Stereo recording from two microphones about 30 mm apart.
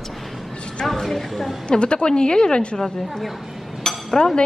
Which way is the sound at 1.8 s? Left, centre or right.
Left.